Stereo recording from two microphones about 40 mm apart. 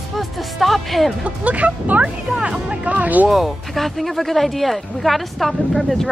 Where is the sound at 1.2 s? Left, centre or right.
Right.